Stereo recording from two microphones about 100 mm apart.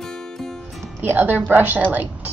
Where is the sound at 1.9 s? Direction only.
15° right (ahead or behind).